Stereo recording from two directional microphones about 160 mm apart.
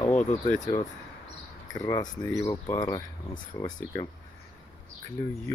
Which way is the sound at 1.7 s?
25° left (ahead or behind).